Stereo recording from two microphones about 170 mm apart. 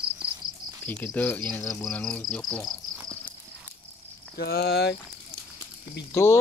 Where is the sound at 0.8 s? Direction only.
10° left (ahead or behind).